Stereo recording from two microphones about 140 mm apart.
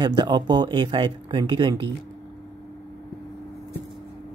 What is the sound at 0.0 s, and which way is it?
Speech, 30° right (ahead or behind).